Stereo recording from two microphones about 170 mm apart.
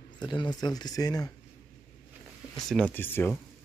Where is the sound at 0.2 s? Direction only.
25° left (ahead or behind).